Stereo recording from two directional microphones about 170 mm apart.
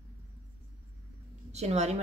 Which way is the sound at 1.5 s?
40° right (ahead or behind).